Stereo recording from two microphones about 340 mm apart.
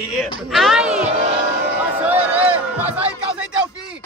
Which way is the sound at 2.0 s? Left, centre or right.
Centre.